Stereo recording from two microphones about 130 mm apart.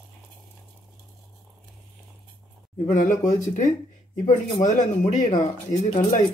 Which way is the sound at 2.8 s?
75° left (ahead or behind).